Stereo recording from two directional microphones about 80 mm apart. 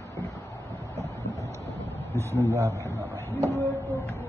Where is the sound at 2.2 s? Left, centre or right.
Right.